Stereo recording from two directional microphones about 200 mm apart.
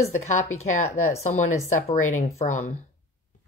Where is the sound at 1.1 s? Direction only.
35° left (ahead or behind).